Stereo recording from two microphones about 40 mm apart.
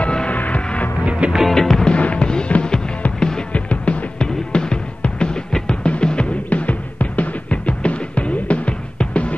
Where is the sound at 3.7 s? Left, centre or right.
Left.